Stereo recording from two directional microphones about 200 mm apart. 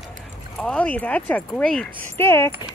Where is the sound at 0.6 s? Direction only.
5° left (ahead or behind).